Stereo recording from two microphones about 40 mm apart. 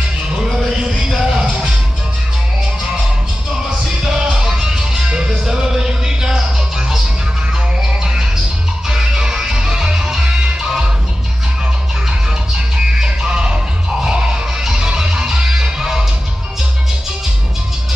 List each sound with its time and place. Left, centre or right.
1.0 s music: centre
4.0 s music: centre
8.0 s music: centre
12.5 s music: centre